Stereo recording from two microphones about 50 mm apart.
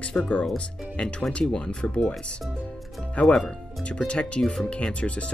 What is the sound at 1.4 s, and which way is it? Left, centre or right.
Speech, centre.